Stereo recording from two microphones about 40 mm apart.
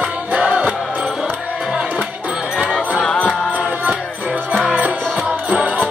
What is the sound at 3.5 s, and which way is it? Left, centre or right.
Music, right.